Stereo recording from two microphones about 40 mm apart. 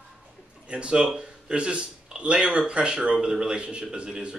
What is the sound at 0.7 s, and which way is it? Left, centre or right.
A man's voice, right.